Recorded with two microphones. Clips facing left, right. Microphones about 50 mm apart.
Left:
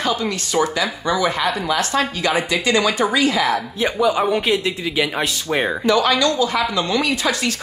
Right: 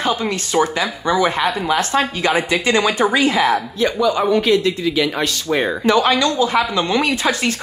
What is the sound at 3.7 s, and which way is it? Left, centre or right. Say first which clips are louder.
Speech: right 1 dB; centre.